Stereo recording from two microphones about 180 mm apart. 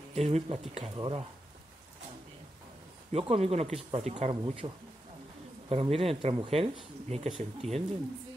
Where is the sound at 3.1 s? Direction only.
35° right (ahead or behind).